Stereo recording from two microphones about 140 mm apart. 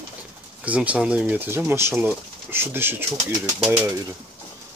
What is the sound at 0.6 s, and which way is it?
Speech, 10° right (ahead or behind).